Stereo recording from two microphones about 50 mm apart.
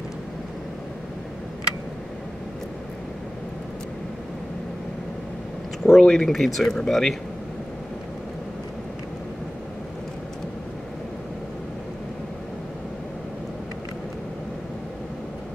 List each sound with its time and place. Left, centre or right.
5.9 s speech: centre